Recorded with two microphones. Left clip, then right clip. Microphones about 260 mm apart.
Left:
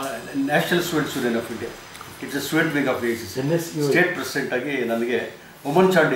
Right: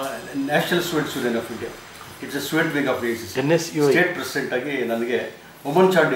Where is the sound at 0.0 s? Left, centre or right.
Centre.